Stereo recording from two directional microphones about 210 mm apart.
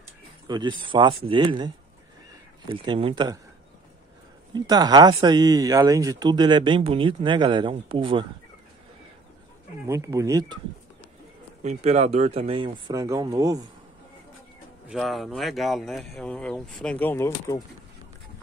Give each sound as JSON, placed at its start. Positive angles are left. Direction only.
{"t": 0.5, "sound": "speech", "side_deg": -20}
{"t": 2.7, "sound": "speech", "side_deg": -25}
{"t": 4.6, "sound": "speech", "side_deg": -20}
{"t": 9.8, "sound": "speech", "side_deg": -15}
{"t": 11.6, "sound": "speech", "side_deg": -30}
{"t": 12.8, "sound": "speech", "side_deg": -15}
{"t": 14.9, "sound": "speech", "side_deg": 0}